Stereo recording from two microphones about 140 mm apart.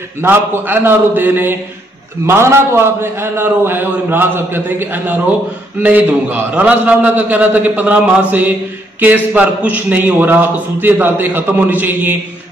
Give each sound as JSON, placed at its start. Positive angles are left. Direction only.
{"t": 0.2, "sound": "a man's voice", "side_deg": -15}